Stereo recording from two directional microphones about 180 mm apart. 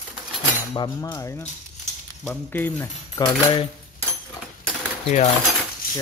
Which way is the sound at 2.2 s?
10° left (ahead or behind).